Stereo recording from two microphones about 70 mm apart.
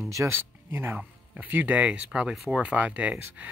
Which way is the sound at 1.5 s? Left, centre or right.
Right.